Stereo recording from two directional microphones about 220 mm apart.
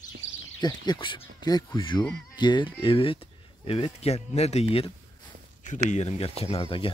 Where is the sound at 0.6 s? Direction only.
20° left (ahead or behind).